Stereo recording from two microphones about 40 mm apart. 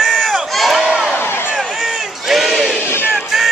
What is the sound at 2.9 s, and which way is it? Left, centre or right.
Music, left.